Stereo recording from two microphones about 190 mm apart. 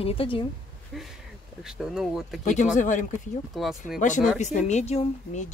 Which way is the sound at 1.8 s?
Centre (ahead or behind).